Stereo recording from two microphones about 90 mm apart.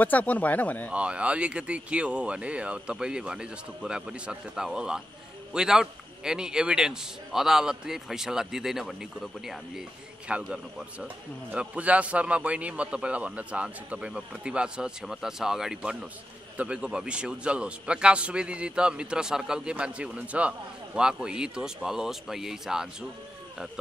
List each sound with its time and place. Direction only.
0.0 s speech: 20° left (ahead or behind)
0.9 s a man's voice: 15° right (ahead or behind)